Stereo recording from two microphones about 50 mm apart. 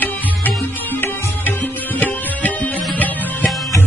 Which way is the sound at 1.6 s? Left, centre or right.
Left.